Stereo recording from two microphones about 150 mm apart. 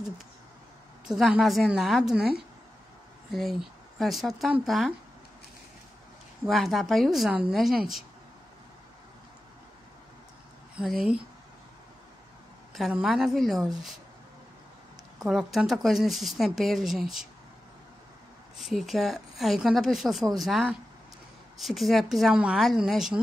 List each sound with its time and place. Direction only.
1.0 s speech: centre (ahead or behind)
3.3 s speech: centre (ahead or behind)
6.4 s speech: centre (ahead or behind)
10.8 s speech: centre (ahead or behind)
12.7 s speech: centre (ahead or behind)
15.2 s speech: centre (ahead or behind)
18.6 s speech: centre (ahead or behind)